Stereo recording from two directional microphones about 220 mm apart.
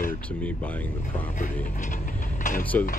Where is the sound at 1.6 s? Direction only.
35° left (ahead or behind).